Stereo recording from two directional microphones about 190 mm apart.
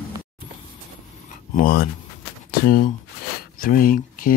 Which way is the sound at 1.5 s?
50° left (ahead or behind).